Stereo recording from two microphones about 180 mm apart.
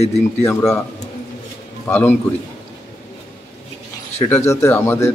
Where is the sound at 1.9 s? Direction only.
10° left (ahead or behind).